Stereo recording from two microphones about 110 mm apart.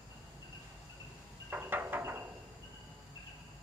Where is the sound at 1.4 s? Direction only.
20° right (ahead or behind).